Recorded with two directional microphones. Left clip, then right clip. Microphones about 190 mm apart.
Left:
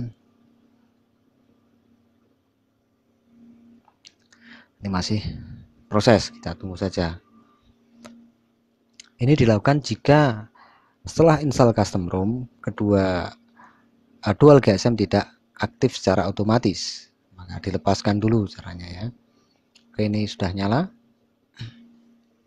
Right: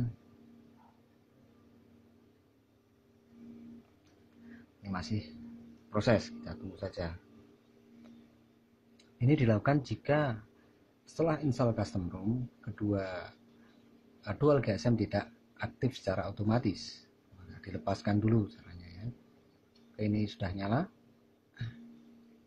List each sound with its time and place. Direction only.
4.9 s speech: 45° left (ahead or behind)
8.9 s speech: 45° left (ahead or behind)
20.0 s speech: 45° left (ahead or behind)